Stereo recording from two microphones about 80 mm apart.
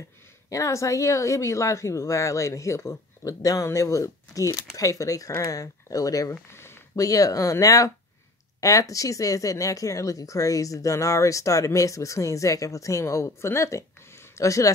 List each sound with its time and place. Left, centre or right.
0.5 s speech: left
6.5 s a sound: left
7.0 s speech: left